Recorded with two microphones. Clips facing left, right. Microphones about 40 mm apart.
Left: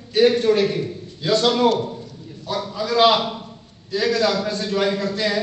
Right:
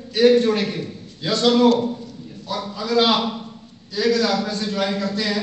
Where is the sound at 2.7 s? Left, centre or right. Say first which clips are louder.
Left 2 dB; left.